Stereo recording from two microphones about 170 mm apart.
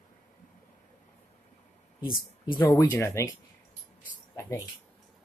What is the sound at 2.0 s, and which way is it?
Speech, 60° left (ahead or behind).